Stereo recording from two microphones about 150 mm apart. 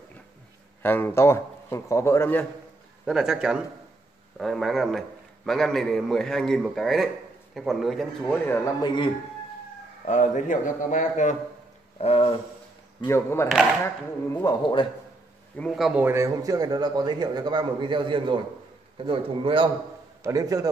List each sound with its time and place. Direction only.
0.8 s a man's voice: 15° left (ahead or behind)
3.1 s a man's voice: 5° right (ahead or behind)
8.5 s speech: 25° left (ahead or behind)
10.0 s a man's voice: 55° left (ahead or behind)
12.0 s speech: 40° left (ahead or behind)
13.1 s a man's voice: 15° left (ahead or behind)
14.6 s speech: 30° left (ahead or behind)
15.5 s a man's voice: 5° left (ahead or behind); by 19.7 s 35° right (ahead or behind)
20.2 s a man's voice: 25° right (ahead or behind)